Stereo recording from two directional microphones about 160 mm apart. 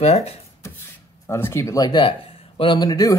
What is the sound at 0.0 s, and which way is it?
Speech, 40° left (ahead or behind).